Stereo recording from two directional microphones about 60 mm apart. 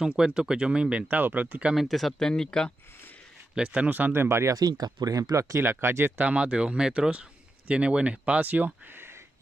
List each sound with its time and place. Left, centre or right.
0.0 s speech: centre
1.1 s speech: right
1.8 s speech: centre
3.5 s speech: centre
4.1 s speech: right
4.6 s speech: right
5.6 s speech: right
6.1 s speech: right